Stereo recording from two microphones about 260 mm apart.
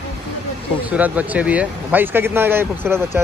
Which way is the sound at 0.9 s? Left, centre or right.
Centre.